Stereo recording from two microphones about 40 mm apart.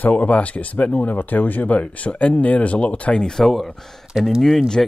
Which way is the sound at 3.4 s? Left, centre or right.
Centre.